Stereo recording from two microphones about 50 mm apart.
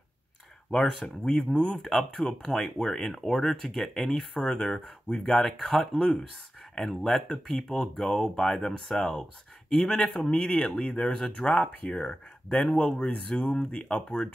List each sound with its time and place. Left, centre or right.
0.7 s speech: centre
1.8 s speech: centre
10.8 s speech: left